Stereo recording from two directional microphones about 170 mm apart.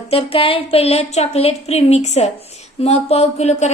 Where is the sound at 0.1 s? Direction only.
35° left (ahead or behind).